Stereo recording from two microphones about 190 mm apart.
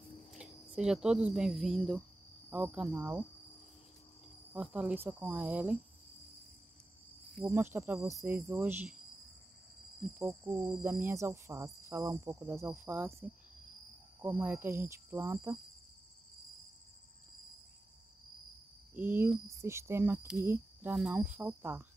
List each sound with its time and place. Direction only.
0.3 s speech: 5° right (ahead or behind)
4.6 s speech: 5° right (ahead or behind)
7.5 s speech: 10° right (ahead or behind)
10.2 s cricket: 20° right (ahead or behind)
10.6 s speech: 10° right (ahead or behind)
18.9 s speech: 10° right (ahead or behind)